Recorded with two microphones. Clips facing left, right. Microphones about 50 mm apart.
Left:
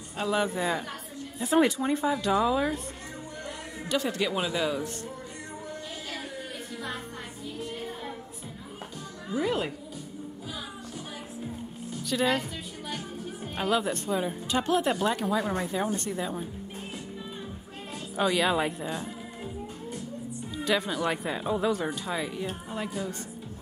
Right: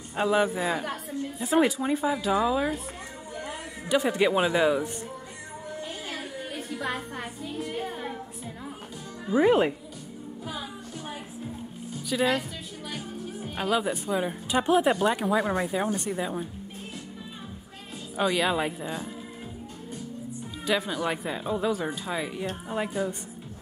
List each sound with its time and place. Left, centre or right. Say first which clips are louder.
0.2 s a woman's voice: right 3 dB; centre
3.9 s speech: right 5 dB; centre
9.3 s speech: right 8 dB; right
12.0 s a woman's voice: right 1 dB; centre
18.1 s speech: even; centre
20.5 s speech: even; centre
22.7 s speech: right 4 dB; right